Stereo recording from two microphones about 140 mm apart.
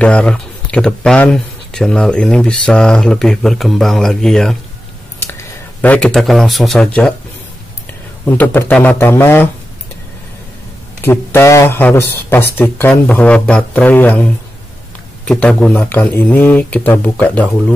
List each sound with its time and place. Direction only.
0.0 s speech: 5° left (ahead or behind)
8.3 s speech: 15° left (ahead or behind)
11.0 s speech: 15° left (ahead or behind)